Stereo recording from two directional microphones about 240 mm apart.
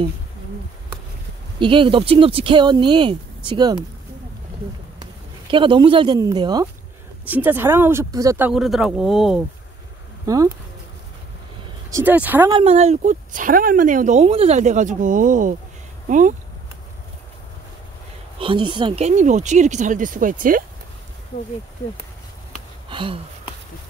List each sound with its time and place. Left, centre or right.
1.6 s speech: right
5.5 s speech: right; by 9.4 s centre
10.2 s speech: centre
11.9 s speech: centre
12.5 s speech: right
18.4 s speech: right
22.8 s speech: right